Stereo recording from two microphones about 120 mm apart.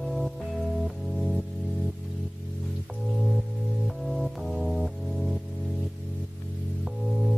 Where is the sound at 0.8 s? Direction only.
Centre (ahead or behind).